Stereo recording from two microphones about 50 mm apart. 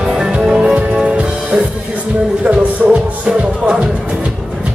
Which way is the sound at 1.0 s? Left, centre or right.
Right.